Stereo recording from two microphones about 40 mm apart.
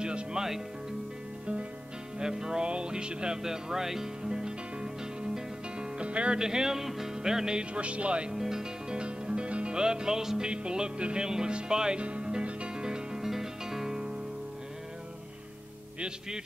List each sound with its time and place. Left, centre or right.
0.0 s speech: centre
2.1 s speech: centre
2.6 s music: right
6.4 s music: centre
7.7 s speech: right
8.3 s music: centre
8.9 s music: right
10.5 s speech: right
12.0 s music: right